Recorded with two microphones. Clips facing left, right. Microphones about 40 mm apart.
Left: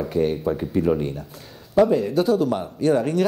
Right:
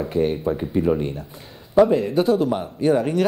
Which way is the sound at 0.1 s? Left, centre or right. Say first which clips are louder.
Even; centre.